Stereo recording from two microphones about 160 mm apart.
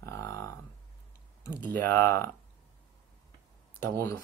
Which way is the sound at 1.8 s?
15° left (ahead or behind).